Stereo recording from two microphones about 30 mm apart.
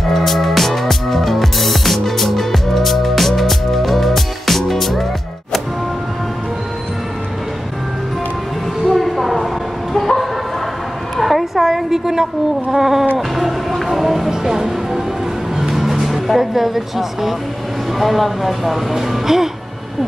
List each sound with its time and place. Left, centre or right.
0.0 s music: centre
8.8 s a sound: centre
9.9 s vehicle: centre
11.1 s a sound: centre
11.6 s a sound: centre
12.7 s cat: centre
13.3 s music: centre
14.3 s music: centre
15.8 s music: centre
17.9 s speech: centre
18.9 s music: centre